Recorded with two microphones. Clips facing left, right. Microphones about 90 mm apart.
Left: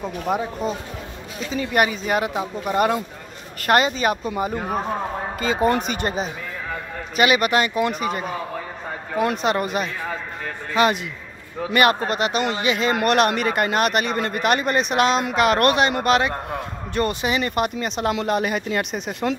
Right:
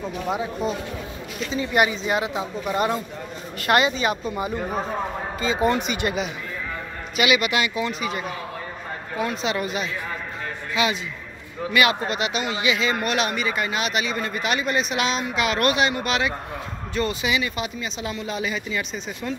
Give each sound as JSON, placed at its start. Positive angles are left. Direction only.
{"t": 0.6, "sound": "speech", "side_deg": 40}
{"t": 12.9, "sound": "speech", "side_deg": 55}